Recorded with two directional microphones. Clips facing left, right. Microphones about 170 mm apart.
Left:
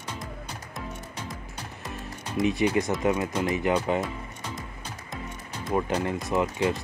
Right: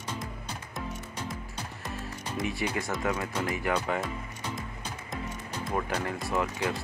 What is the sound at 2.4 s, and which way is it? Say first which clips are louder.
Speech: left 9 dB; 20° left (ahead or behind).